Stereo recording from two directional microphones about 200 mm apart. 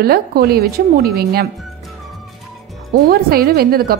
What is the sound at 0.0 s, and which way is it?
A woman's voice, 50° right (ahead or behind).